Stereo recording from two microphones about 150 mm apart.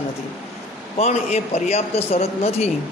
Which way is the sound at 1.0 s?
45° left (ahead or behind).